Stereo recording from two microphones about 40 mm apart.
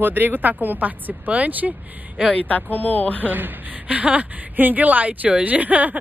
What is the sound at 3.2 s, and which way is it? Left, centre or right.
Speech, right.